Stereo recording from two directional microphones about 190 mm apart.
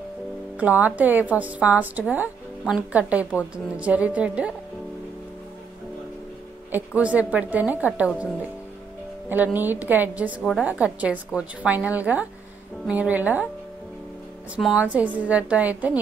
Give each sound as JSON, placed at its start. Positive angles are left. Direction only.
{"t": 0.6, "sound": "a woman's voice", "side_deg": -10}
{"t": 7.0, "sound": "a woman's voice", "side_deg": -5}
{"t": 9.3, "sound": "a woman's voice", "side_deg": -10}
{"t": 14.5, "sound": "a woman's voice", "side_deg": -5}